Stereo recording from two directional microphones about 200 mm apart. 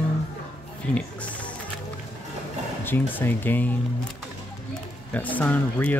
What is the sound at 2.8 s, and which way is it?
Speech, 10° left (ahead or behind).